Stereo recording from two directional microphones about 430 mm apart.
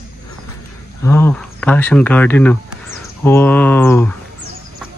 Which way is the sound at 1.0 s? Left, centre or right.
Centre.